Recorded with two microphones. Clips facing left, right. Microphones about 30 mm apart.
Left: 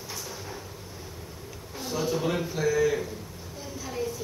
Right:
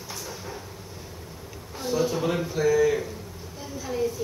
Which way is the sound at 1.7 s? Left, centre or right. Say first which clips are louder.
Right 4 dB; centre.